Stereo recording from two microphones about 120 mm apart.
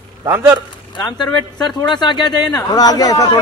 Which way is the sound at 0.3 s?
15° right (ahead or behind).